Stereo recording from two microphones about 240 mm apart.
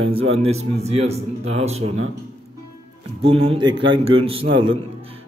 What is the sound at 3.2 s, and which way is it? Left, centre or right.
Speech, right.